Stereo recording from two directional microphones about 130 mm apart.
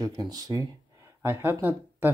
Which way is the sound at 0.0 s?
30° right (ahead or behind).